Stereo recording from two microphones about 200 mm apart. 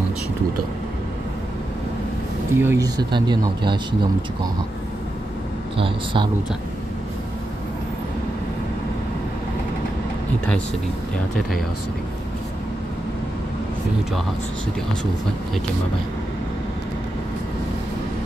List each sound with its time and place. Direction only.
2.5 s speech: 10° right (ahead or behind)
5.8 s speech: 25° right (ahead or behind)